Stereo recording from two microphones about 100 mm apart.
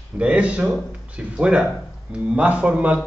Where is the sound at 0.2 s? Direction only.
10° right (ahead or behind).